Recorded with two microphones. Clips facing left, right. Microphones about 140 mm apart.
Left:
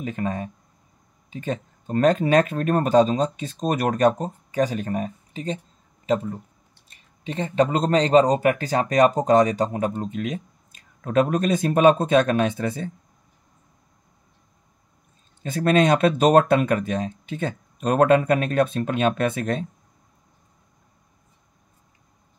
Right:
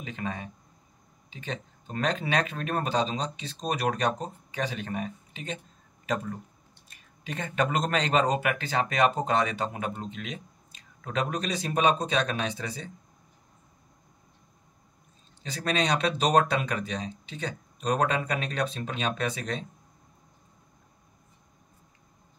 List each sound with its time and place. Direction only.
0.0 s speech: 45° left (ahead or behind)
6.0 s speech: 25° left (ahead or behind); by 12.9 s 50° left (ahead or behind)
15.4 s speech: 50° left (ahead or behind)